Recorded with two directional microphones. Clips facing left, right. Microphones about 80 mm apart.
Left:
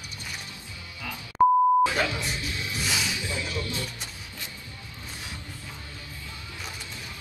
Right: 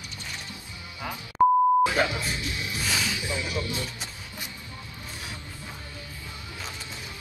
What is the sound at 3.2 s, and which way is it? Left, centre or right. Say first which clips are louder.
Music: right 2 dB; right.